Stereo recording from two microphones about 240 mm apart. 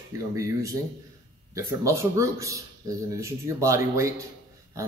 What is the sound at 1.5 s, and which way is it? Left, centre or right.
Speech, centre.